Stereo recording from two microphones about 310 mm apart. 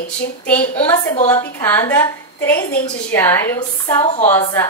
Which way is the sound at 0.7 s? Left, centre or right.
Centre.